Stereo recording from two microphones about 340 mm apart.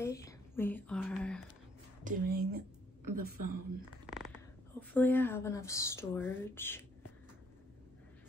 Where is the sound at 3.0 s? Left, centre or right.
Right.